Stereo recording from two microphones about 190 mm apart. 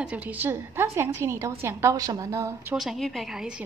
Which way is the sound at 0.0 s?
10° right (ahead or behind).